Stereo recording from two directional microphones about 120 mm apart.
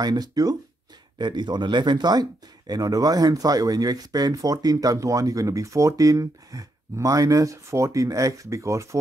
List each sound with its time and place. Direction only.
0.0 s speech: 35° right (ahead or behind)